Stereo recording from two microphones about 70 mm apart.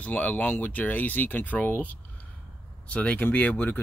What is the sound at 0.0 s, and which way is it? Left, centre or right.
Speech, left.